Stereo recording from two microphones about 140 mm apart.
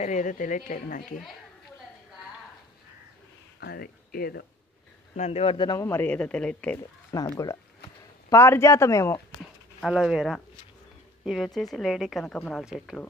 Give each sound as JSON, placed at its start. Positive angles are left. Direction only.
{"t": 0.0, "sound": "speech", "side_deg": 65}
{"t": 3.7, "sound": "speech", "side_deg": 90}
{"t": 5.1, "sound": "speech", "side_deg": 50}
{"t": 5.8, "sound": "speech", "side_deg": 15}
{"t": 7.1, "sound": "speech", "side_deg": 25}
{"t": 9.8, "sound": "a woman's voice", "side_deg": -5}